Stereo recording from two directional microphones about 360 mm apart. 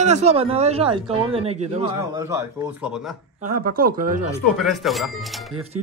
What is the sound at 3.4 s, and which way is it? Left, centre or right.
Speech, right.